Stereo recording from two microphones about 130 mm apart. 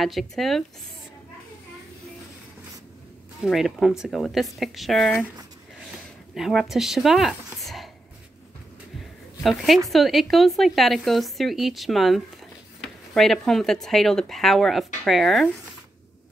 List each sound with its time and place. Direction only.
0.0 s speech: centre (ahead or behind)
3.4 s speech: centre (ahead or behind)
6.3 s speech: centre (ahead or behind)
9.4 s speech: centre (ahead or behind)